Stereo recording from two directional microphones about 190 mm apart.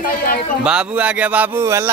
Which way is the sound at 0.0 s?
45° left (ahead or behind).